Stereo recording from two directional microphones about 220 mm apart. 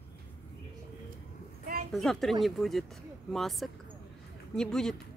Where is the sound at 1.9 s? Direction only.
Centre (ahead or behind).